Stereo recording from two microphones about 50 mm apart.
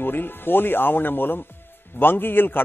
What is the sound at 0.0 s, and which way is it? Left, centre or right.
A man's voice, left.